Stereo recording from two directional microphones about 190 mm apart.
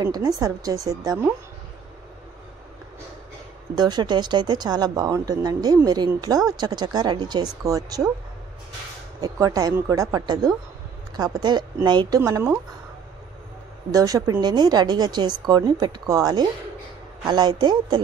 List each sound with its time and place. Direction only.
0.0 s speech: 20° right (ahead or behind)
3.7 s speech: 20° right (ahead or behind)
9.2 s speech: 20° right (ahead or behind)
12.2 s speech: 10° right (ahead or behind)
13.9 s speech: 20° right (ahead or behind)